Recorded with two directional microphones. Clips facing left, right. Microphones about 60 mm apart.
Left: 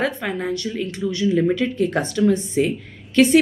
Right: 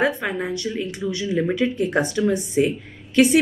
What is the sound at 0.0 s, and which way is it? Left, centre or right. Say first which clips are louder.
Speech: right 1 dB; right.